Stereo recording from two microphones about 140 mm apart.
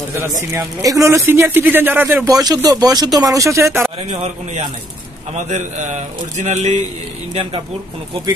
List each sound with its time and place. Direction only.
0.4 s speech: 25° right (ahead or behind)
2.2 s speech: 25° right (ahead or behind)
5.5 s speech: 55° right (ahead or behind)